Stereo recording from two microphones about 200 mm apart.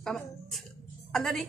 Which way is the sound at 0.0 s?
Centre (ahead or behind).